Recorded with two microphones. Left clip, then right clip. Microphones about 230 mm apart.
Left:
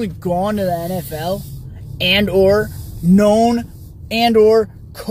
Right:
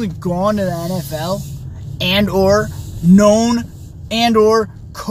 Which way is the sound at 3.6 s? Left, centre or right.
Right.